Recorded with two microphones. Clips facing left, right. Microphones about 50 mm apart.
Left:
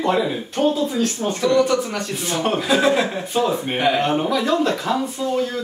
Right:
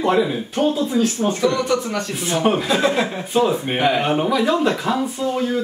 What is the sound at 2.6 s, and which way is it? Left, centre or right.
Speech, centre.